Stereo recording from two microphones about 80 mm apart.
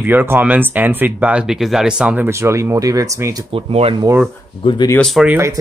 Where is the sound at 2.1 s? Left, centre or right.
Right.